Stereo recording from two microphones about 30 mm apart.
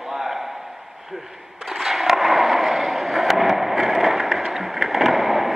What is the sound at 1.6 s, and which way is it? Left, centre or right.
Skateboard, centre.